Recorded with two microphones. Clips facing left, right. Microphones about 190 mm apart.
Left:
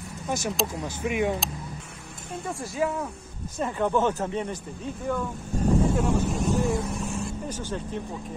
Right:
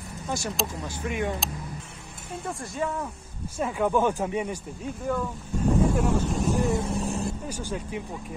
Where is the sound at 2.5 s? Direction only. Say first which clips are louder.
Left 3 dB; centre (ahead or behind).